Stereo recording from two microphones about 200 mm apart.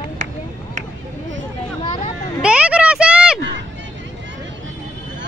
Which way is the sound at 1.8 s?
30° left (ahead or behind).